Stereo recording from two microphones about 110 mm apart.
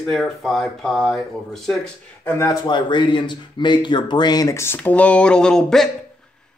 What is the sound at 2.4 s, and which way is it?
Speech, 45° left (ahead or behind).